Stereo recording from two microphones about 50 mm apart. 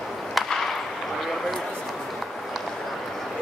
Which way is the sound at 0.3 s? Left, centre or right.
Centre.